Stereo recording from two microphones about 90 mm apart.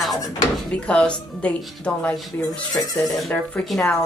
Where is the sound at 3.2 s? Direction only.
5° left (ahead or behind).